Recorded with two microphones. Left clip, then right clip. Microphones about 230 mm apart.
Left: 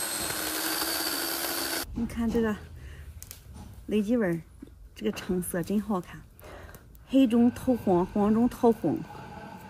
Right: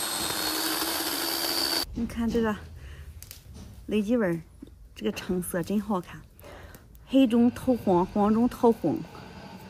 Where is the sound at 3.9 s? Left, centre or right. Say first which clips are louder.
Right 1 dB; centre.